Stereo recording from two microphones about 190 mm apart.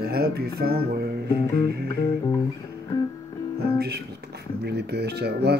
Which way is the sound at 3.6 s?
55° right (ahead or behind).